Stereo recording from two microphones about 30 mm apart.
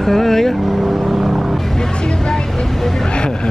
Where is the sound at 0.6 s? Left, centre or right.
Centre.